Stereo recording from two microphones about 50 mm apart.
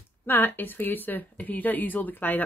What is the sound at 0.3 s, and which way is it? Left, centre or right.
Speech, left.